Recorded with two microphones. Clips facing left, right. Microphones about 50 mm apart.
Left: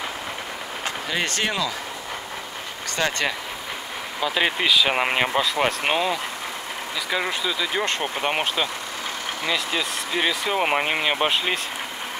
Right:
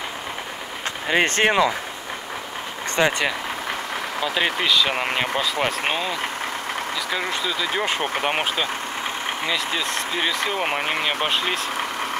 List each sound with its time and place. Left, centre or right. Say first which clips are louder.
1.0 s speech: right 8 dB; right
3.0 s speech: right 4 dB; centre
4.2 s speech: left 1 dB; centre
5.4 s speech: left 1 dB; centre